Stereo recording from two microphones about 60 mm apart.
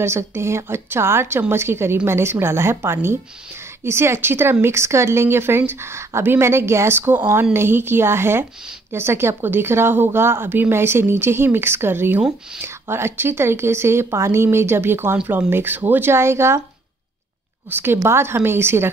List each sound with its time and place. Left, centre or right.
0.0 s speech: right
7.0 s speech: right
17.6 s speech: right